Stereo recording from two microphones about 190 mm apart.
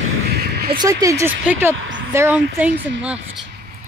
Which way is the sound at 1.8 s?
80° right.